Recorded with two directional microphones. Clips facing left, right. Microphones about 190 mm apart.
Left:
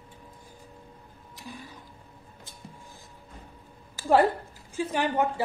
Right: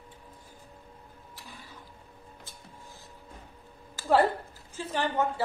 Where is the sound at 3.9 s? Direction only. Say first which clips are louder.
Left 2 dB; 15° left (ahead or behind).